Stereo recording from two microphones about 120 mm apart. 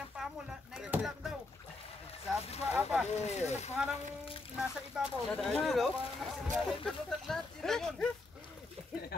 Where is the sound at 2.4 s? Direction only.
60° left (ahead or behind).